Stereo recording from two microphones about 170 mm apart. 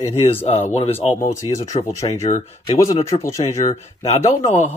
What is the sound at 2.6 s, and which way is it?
Speech, 20° left (ahead or behind).